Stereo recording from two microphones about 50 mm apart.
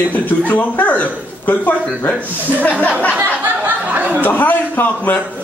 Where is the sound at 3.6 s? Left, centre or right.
Right.